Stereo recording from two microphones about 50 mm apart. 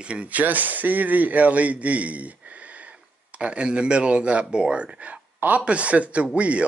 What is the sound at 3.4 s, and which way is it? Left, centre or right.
Speech, right.